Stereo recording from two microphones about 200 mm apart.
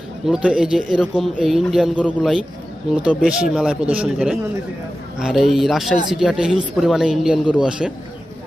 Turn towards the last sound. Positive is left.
turn(degrees=-5)  # may be behind; listen again after turning